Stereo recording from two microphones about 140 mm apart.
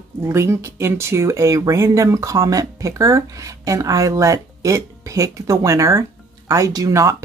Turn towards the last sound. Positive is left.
turn(degrees=-25)  # may be behind; listen again after turning